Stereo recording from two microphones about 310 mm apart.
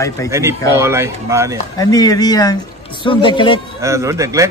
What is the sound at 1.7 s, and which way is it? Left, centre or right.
Speech, centre.